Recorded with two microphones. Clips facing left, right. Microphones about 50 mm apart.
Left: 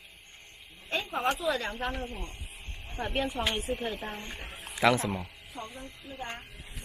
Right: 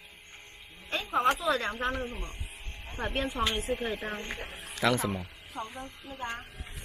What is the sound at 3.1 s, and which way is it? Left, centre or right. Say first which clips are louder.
Speech: left 1 dB; right.